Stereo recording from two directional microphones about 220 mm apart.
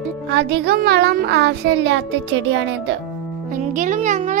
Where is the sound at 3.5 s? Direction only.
35° right (ahead or behind).